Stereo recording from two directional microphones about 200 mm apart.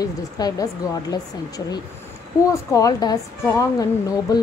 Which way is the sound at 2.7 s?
20° left (ahead or behind).